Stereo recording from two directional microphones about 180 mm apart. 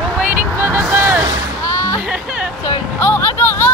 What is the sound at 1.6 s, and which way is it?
Music, 15° left (ahead or behind).